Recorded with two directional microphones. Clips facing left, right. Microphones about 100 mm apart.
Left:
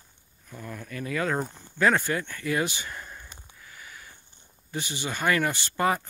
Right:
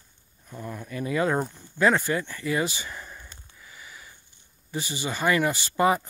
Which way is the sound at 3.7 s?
5° right (ahead or behind).